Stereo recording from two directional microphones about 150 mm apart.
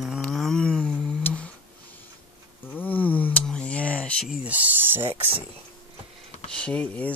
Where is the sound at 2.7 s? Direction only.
10° left (ahead or behind).